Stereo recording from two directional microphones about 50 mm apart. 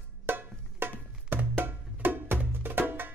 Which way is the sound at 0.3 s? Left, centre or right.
Right.